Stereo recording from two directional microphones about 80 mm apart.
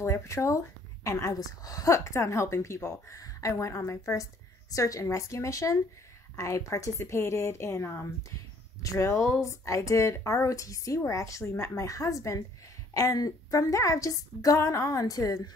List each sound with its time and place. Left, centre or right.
0.0 s a woman's voice: left